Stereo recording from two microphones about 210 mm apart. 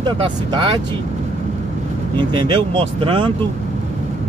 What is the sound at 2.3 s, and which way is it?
Speech, 20° right (ahead or behind).